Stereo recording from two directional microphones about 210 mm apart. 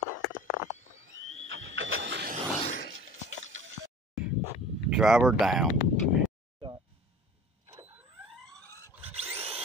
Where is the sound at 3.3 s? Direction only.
70° right (ahead or behind).